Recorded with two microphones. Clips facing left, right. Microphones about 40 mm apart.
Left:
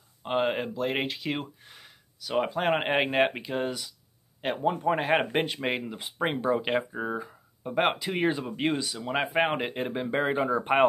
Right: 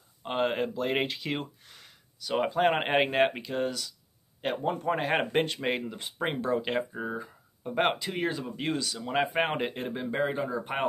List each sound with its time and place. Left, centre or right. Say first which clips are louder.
0.2 s speech: left 1 dB; centre
8.1 s speech: left 4 dB; left